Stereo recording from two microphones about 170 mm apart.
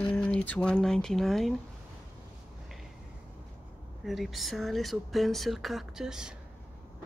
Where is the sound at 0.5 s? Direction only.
5° left (ahead or behind).